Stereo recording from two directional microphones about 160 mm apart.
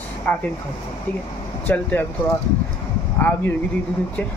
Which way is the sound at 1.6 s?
10° left (ahead or behind).